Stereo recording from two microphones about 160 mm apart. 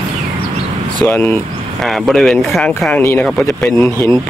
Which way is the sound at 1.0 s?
10° left (ahead or behind).